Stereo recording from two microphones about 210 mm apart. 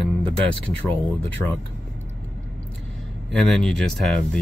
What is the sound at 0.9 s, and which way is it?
Speech, 10° left (ahead or behind).